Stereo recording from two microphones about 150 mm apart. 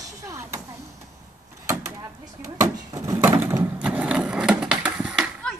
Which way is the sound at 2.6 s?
20° right (ahead or behind).